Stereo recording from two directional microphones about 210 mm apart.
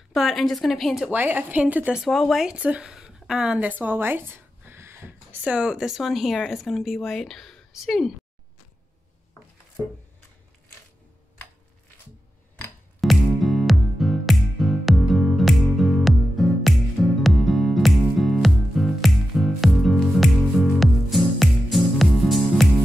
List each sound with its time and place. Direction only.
0.1 s a woman's voice: centre (ahead or behind)
13.0 s music: centre (ahead or behind)